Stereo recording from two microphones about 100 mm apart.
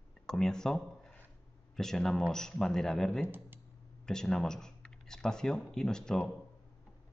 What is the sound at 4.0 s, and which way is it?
Speech, 5° left (ahead or behind).